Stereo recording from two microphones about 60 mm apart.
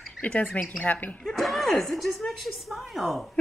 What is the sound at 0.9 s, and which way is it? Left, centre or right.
Speech, left.